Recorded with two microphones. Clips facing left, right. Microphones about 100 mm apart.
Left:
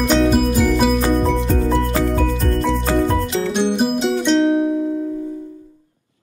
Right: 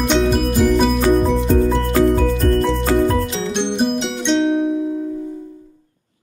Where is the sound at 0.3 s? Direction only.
Centre (ahead or behind).